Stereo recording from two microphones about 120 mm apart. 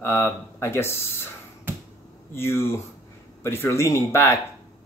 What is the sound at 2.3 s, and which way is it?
Speech, 20° left (ahead or behind).